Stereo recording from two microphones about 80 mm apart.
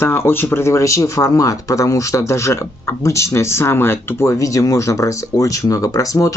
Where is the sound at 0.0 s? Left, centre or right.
Left.